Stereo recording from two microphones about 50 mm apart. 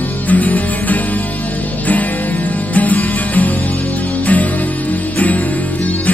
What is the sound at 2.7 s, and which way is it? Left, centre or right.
Music, left.